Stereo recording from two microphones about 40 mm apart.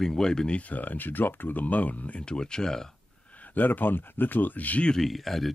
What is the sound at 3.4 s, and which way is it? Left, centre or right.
Speech, left.